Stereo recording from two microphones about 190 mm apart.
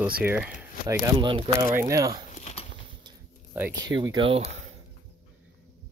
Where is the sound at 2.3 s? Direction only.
35° left (ahead or behind).